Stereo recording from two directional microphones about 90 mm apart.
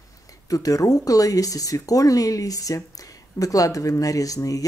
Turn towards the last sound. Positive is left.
turn(degrees=40)  # may be behind; listen again after turning